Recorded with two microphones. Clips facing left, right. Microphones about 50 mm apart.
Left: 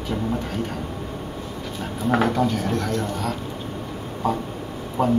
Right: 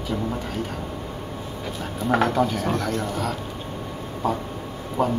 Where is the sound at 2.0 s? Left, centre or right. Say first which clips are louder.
Even; centre.